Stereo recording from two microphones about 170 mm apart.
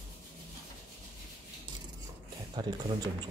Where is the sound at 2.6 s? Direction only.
25° right (ahead or behind).